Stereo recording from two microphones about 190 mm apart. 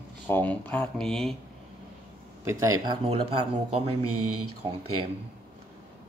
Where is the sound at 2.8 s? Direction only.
25° right (ahead or behind).